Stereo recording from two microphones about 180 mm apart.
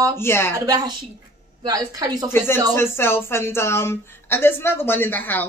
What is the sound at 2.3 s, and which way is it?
A woman's voice, 10° left (ahead or behind).